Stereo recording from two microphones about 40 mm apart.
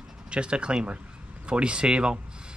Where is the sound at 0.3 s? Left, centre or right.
Right.